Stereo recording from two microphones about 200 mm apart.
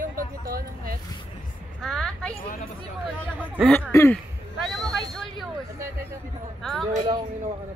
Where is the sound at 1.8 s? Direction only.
5° left (ahead or behind).